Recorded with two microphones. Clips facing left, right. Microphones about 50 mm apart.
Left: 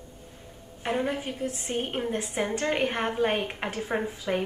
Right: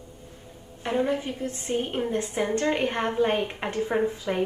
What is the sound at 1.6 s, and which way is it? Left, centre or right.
A woman's voice, left.